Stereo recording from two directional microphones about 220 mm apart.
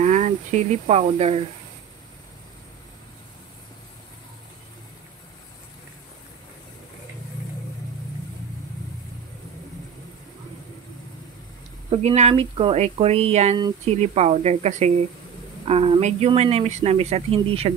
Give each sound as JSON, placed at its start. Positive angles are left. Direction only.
{"t": 0.0, "sound": "speech", "side_deg": -35}
{"t": 11.9, "sound": "speech", "side_deg": -30}